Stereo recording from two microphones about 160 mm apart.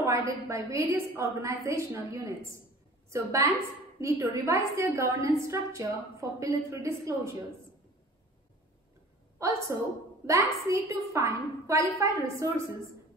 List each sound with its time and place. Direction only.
0.0 s a woman's voice: 20° right (ahead or behind)
9.4 s a woman's voice: 20° right (ahead or behind)